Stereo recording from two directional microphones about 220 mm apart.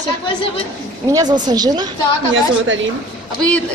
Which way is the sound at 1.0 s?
15° right (ahead or behind).